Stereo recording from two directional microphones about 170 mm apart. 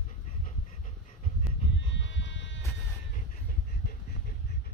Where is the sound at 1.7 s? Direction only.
90° left.